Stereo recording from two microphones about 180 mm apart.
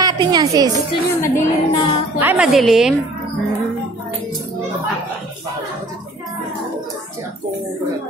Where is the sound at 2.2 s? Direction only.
5° right (ahead or behind).